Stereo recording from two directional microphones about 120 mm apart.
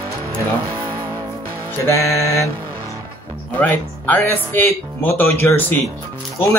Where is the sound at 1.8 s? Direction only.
25° left (ahead or behind).